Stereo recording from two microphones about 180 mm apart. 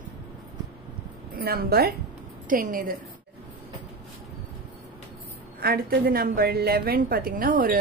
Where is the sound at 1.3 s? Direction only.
60° right (ahead or behind).